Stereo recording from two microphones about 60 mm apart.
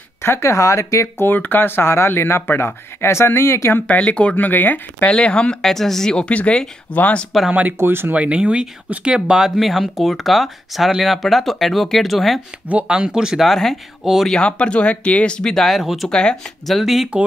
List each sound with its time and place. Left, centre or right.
0.2 s speech: left
1.0 s speech: left
3.8 s speech: left
4.5 s speech: left
5.1 s speech: centre
7.7 s speech: right
8.1 s speech: centre
12.6 s speech: centre
13.5 s speech: centre
14.3 s speech: centre
15.5 s speech: centre
16.1 s speech: centre
16.6 s speech: centre